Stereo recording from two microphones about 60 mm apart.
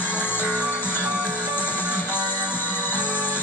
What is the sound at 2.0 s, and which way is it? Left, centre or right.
Music, left.